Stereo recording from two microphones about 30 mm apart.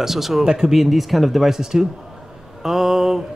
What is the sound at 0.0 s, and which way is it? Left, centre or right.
Speech, centre.